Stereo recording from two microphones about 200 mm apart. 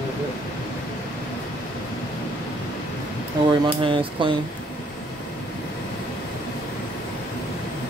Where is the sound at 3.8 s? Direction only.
25° right (ahead or behind).